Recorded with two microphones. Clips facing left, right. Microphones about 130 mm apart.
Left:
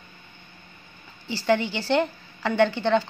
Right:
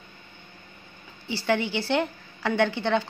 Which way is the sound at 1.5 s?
10° right (ahead or behind).